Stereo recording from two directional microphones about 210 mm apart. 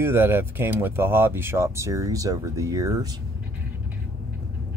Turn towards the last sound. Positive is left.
turn(degrees=-15)  # may be behind; listen again after turning